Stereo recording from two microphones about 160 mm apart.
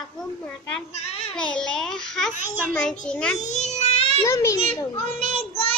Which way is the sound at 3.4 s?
45° left (ahead or behind).